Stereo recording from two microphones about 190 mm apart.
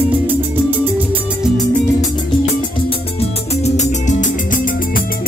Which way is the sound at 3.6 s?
40° left (ahead or behind).